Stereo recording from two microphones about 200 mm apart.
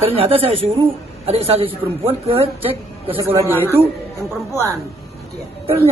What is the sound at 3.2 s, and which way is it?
Speech, 10° right (ahead or behind).